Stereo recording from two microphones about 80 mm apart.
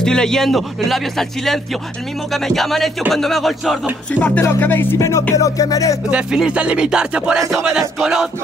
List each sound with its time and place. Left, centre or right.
0.0 s a man's voice: centre
4.1 s music: left
4.9 s music: left
6.0 s music: centre
7.3 s a man's voice: centre